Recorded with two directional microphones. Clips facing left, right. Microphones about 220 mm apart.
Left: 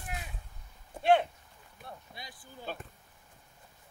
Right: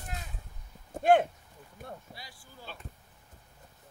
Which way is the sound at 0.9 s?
45° right (ahead or behind).